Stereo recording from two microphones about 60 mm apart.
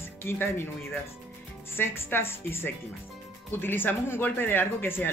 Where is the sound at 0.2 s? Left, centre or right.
Left.